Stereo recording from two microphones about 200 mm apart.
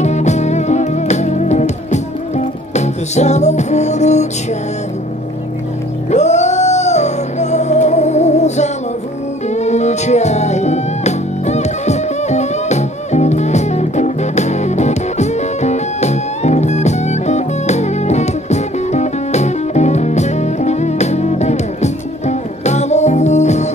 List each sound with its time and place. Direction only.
0.0 s music: 35° left (ahead or behind)
6.0 s music: 35° left (ahead or behind)